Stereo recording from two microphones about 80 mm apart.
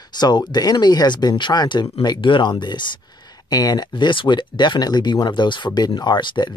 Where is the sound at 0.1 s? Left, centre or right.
Left.